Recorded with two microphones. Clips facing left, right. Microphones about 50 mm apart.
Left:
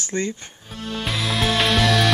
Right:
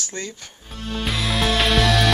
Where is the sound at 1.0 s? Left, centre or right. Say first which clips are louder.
Right 1 dB; centre.